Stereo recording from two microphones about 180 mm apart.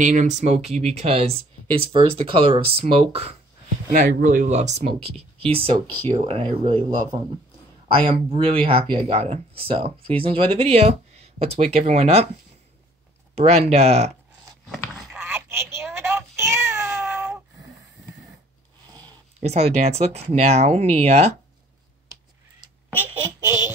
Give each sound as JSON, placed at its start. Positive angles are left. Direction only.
{"t": 0.0, "sound": "speech", "side_deg": -45}
{"t": 3.9, "sound": "speech", "side_deg": -50}
{"t": 8.1, "sound": "speech", "side_deg": -35}
{"t": 13.3, "sound": "speech", "side_deg": -35}
{"t": 14.7, "sound": "a sound", "side_deg": 0}
{"t": 15.1, "sound": "meow", "side_deg": -15}
{"t": 19.4, "sound": "speech", "side_deg": -35}
{"t": 23.1, "sound": "child singing", "side_deg": -20}